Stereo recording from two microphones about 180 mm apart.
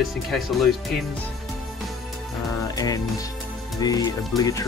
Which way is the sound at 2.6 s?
20° left (ahead or behind).